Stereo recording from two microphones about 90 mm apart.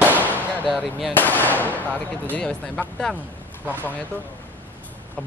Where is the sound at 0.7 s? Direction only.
5° right (ahead or behind).